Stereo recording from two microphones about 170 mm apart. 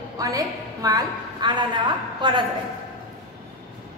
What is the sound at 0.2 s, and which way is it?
A woman's voice, 20° right (ahead or behind).